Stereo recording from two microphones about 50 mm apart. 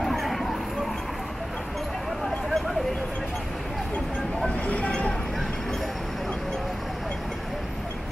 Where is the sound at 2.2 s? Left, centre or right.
Centre.